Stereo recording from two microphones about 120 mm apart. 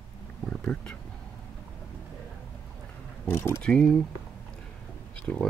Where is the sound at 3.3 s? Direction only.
20° left (ahead or behind).